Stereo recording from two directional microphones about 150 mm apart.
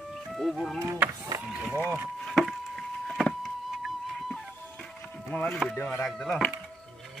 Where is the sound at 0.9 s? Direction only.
25° right (ahead or behind).